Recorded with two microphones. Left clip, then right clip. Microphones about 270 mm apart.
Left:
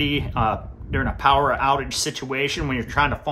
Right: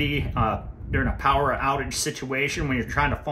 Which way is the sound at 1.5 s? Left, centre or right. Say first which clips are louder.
Left 4 dB; left.